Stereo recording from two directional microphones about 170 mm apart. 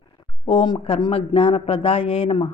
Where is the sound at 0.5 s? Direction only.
30° left (ahead or behind).